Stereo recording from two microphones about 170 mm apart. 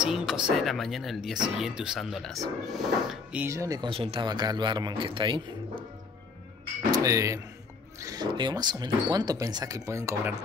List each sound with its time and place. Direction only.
0.0 s speech: 5° right (ahead or behind); by 3.9 s 20° right (ahead or behind)
3.9 s speech: 35° right (ahead or behind)
6.9 s speech: 20° right (ahead or behind)